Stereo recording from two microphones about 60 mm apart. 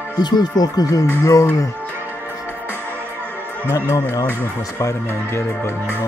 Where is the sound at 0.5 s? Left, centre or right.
Left.